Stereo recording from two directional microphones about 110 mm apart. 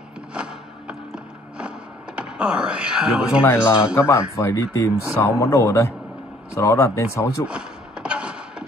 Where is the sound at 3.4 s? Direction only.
25° left (ahead or behind).